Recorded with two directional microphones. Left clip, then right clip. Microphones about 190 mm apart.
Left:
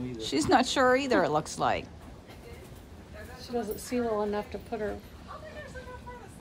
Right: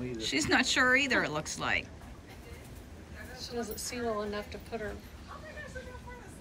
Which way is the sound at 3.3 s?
50° left (ahead or behind).